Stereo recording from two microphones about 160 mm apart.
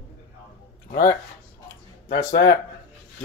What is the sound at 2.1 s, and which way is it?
Speech, 90° left.